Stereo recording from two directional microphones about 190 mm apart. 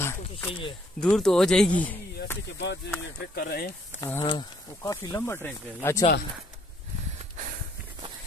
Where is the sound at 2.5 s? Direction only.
65° left (ahead or behind).